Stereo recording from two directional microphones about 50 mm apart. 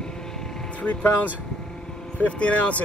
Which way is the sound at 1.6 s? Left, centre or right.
Centre.